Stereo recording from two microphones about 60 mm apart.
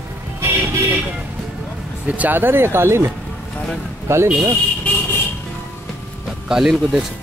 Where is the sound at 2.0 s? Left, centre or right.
Right.